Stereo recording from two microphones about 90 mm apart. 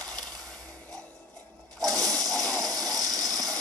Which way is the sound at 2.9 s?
45° right (ahead or behind).